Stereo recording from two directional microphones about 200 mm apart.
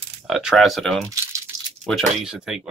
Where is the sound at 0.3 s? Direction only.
5° right (ahead or behind).